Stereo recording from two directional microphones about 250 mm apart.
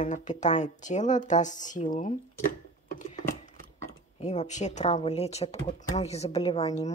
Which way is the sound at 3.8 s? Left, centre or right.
Left.